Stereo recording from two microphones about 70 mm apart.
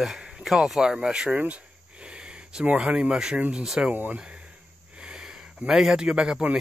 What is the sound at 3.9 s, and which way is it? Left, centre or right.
Speech, right.